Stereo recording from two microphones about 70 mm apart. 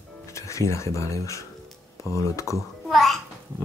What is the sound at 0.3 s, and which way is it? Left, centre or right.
Music, left.